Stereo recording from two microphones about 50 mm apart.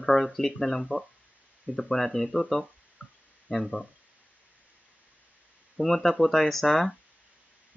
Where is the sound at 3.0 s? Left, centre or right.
Right.